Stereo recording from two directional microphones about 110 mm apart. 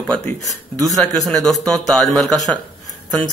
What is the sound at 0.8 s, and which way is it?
Speech, centre (ahead or behind).